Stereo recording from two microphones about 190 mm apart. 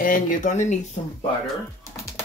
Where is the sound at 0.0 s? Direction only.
45° left (ahead or behind).